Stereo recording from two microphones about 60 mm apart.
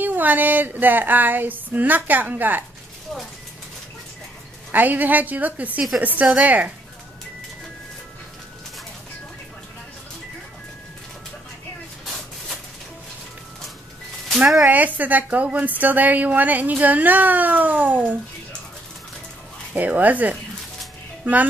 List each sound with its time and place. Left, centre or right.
0.0 s a sound: right
4.7 s speech: right
5.9 s a woman's voice: centre
6.4 s speech: right
14.7 s speech: right
19.7 s speech: right